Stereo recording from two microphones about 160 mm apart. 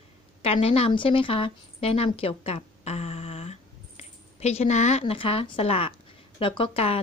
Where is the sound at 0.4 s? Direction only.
40° left (ahead or behind).